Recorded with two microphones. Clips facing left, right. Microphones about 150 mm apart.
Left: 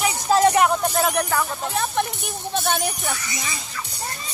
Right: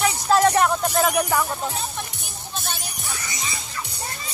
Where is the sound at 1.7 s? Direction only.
65° left (ahead or behind).